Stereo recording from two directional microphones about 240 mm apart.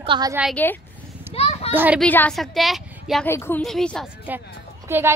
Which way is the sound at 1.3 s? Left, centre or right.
Left.